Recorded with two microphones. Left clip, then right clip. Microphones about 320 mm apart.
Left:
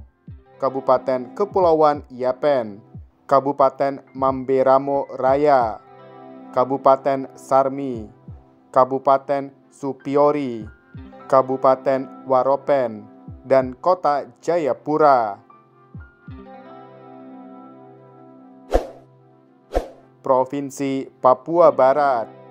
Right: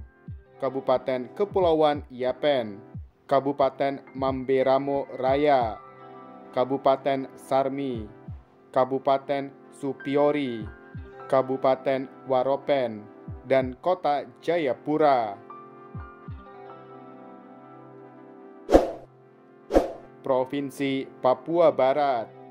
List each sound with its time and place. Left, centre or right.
0.6 s speech: centre
7.8 s speech: left
8.7 s speech: centre
20.2 s speech: centre